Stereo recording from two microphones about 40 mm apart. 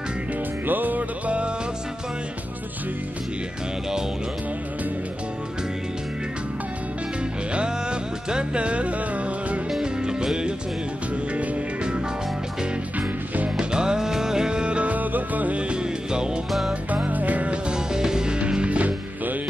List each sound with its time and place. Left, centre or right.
0.7 s music: right
7.5 s music: right
10.0 s music: right
13.6 s music: centre
15.0 s music: right
15.7 s music: right
16.9 s music: right
17.6 s music: centre
18.4 s music: right